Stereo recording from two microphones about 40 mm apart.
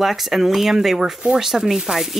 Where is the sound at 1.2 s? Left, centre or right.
Right.